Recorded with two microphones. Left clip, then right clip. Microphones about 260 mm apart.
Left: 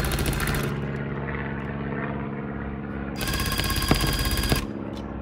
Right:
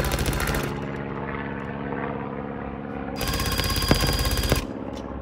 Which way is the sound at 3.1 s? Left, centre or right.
Centre.